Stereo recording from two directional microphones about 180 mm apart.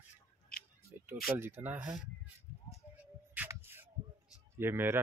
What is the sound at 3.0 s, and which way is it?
Music, 10° right (ahead or behind).